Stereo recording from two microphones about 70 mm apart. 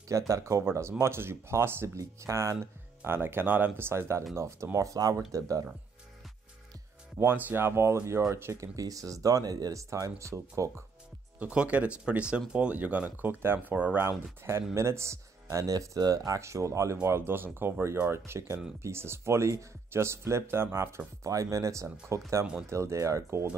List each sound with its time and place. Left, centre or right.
0.3 s speech: right
2.0 s speech: right
3.0 s speech: right
4.7 s speech: right
7.4 s speech: right
11.3 s speech: centre; by 21.0 s right
21.2 s speech: right